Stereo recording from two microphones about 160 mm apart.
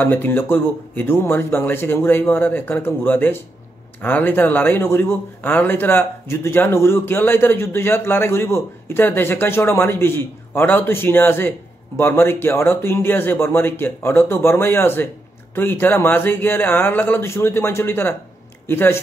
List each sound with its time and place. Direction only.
0.0 s speech: 15° left (ahead or behind)